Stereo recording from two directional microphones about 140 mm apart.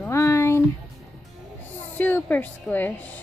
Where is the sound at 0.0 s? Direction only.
20° left (ahead or behind).